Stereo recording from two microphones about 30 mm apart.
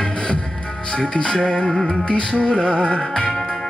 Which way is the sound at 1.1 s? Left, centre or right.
Left.